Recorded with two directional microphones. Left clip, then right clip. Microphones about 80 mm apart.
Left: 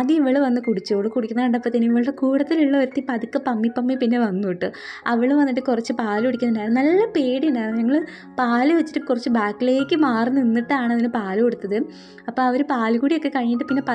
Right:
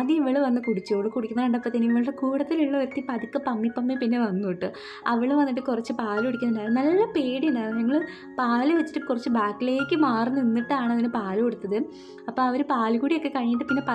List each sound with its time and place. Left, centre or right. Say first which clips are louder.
0.0 s speech: left 5 dB; left
2.5 s a woman's voice: left 6 dB; left